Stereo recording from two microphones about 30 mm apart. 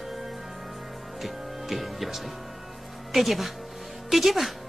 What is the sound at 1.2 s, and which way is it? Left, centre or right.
Music, centre.